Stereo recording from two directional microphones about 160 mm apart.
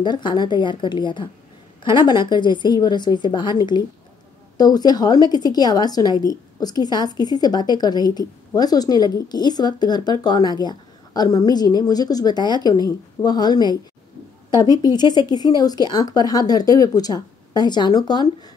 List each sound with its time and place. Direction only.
0.0 s a woman's voice: 25° left (ahead or behind)